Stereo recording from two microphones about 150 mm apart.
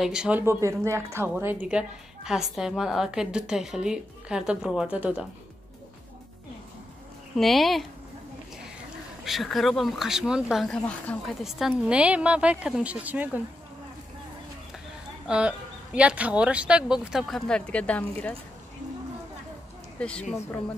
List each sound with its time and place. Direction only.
0.0 s speech: 5° right (ahead or behind)
7.3 s speech: centre (ahead or behind)
9.2 s speech: centre (ahead or behind)
15.2 s speech: 5° right (ahead or behind); by 18.3 s 10° left (ahead or behind)
20.0 s speech: 5° left (ahead or behind)